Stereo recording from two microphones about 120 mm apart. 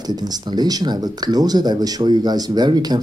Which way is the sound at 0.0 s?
35° right (ahead or behind).